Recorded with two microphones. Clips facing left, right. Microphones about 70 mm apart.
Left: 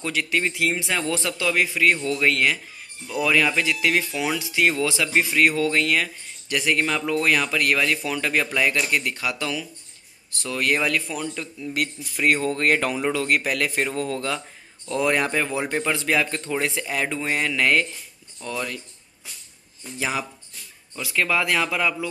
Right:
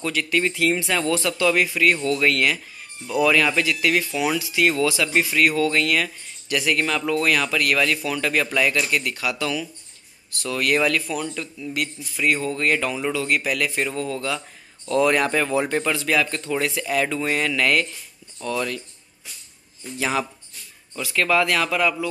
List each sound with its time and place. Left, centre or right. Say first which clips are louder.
0.0 s a man's voice: right 2 dB; centre
12.2 s a man's voice: left 1 dB; left
14.9 s a man's voice: right 3 dB; centre
20.0 s a man's voice: right 3 dB; centre